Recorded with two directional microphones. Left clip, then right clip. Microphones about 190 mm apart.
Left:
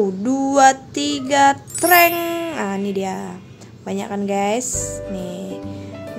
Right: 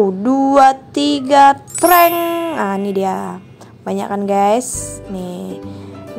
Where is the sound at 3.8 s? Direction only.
20° right (ahead or behind).